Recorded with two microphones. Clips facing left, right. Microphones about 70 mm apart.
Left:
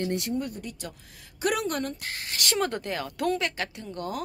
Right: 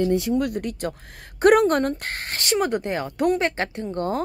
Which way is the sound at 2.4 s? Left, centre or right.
Centre.